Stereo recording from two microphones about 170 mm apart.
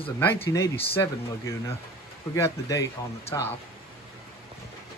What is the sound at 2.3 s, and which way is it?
Speech, 20° left (ahead or behind).